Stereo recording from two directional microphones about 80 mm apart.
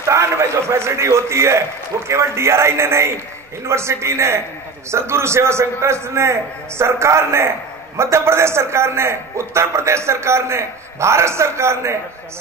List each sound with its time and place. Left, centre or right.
0.1 s a man's voice: right